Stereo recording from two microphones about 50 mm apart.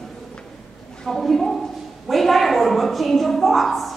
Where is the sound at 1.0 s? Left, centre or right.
Centre.